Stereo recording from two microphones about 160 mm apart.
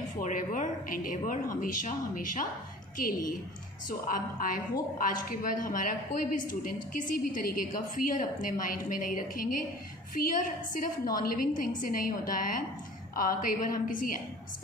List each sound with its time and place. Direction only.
0.2 s a woman's voice: 55° left (ahead or behind)